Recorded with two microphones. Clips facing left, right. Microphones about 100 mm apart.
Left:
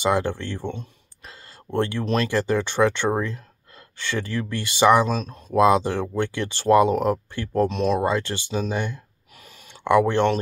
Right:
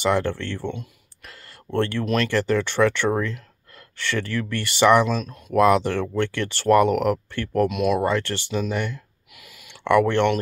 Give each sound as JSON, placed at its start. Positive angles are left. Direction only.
{"t": 0.0, "sound": "speech", "side_deg": 15}
{"t": 0.7, "sound": "a sound", "side_deg": 20}
{"t": 2.2, "sound": "speech", "side_deg": 15}
{"t": 5.0, "sound": "speech", "side_deg": 30}
{"t": 5.6, "sound": "speech", "side_deg": 20}
{"t": 7.6, "sound": "speech", "side_deg": 30}
{"t": 8.0, "sound": "speech", "side_deg": 15}
{"t": 9.3, "sound": "a sound", "side_deg": 30}
{"t": 9.8, "sound": "speech", "side_deg": 15}